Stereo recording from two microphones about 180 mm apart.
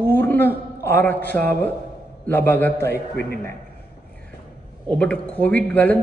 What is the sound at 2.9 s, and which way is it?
Speech, 60° left (ahead or behind).